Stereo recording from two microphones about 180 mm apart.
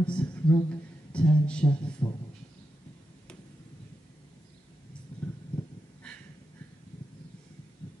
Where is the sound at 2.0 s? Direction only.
20° left (ahead or behind).